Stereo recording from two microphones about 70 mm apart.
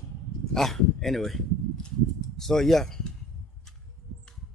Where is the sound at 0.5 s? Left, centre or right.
Centre.